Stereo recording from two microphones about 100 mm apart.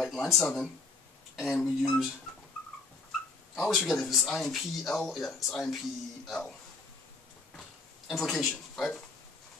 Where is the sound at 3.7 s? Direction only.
5° left (ahead or behind).